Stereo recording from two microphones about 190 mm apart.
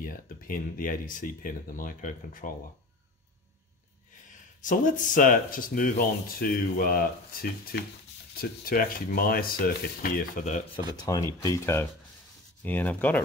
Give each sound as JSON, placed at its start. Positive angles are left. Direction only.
{"t": 0.0, "sound": "speech", "side_deg": 45}
{"t": 4.3, "sound": "speech", "side_deg": 45}
{"t": 11.1, "sound": "speech", "side_deg": 15}